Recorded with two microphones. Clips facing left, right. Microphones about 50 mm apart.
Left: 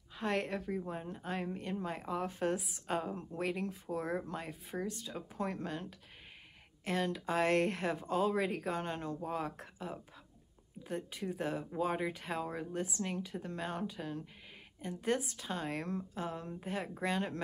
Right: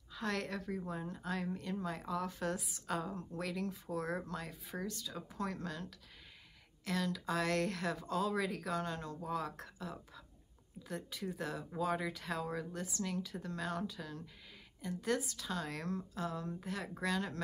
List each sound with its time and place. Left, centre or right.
0.1 s a woman's voice: left